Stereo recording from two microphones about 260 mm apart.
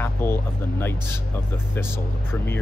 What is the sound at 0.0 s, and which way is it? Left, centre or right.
Speech, centre.